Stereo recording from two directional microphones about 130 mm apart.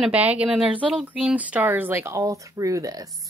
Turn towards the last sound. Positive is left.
turn(degrees=-25)  # may be behind; listen again after turning